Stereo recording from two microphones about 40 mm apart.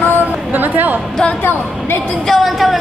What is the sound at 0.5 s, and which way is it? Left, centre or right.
Speech, right.